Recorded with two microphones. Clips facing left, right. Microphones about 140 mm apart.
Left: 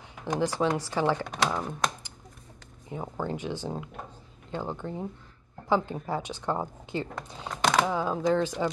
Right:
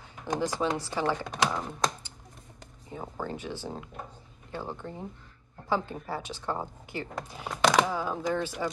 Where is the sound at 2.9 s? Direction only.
15° left (ahead or behind).